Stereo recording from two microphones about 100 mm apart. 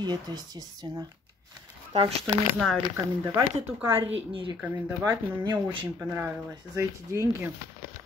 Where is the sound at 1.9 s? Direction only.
90° right.